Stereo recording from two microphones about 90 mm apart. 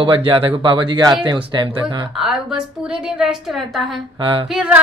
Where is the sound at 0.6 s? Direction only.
60° right (ahead or behind).